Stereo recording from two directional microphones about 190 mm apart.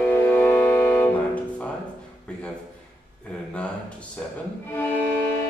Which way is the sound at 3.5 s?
5° left (ahead or behind).